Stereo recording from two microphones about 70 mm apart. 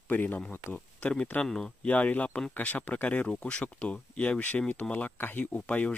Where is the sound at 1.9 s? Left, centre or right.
Left.